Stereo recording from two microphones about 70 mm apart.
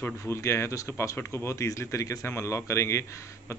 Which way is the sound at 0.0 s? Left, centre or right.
Left.